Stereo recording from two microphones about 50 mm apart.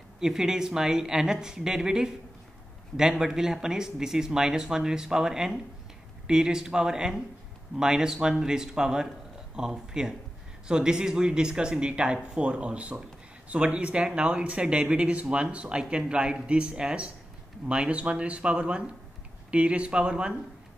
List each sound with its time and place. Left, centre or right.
0.2 s speech: centre